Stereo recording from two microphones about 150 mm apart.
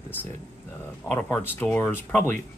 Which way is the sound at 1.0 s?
20° left (ahead or behind).